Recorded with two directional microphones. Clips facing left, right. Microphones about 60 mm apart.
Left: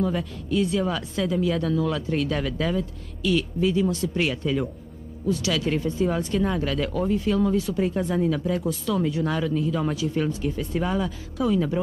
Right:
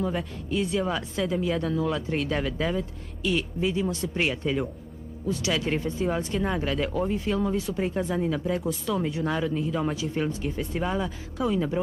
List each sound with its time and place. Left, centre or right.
0.0 s a woman's voice: right